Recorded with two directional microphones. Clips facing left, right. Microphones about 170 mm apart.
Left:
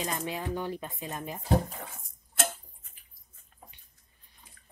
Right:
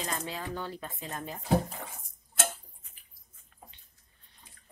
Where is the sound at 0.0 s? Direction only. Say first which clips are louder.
Left 3 dB; 15° left (ahead or behind).